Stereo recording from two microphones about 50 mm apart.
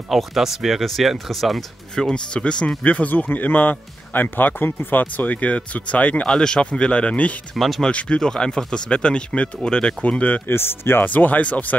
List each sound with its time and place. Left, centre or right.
0.1 s speech: centre
2.0 s speech: centre
2.8 s speech: left
6.2 s speech: centre
7.5 s speech: centre
7.8 s speech: centre
10.5 s speech: left
11.1 s speech: left